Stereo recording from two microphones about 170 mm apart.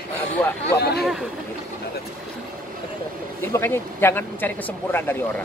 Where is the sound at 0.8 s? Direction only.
70° left (ahead or behind).